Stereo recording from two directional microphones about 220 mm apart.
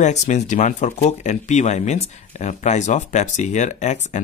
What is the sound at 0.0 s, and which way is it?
Speech, 30° left (ahead or behind).